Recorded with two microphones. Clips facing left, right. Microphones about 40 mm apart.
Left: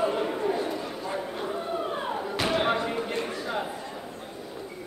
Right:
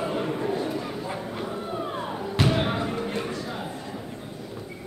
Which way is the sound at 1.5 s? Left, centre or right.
Centre.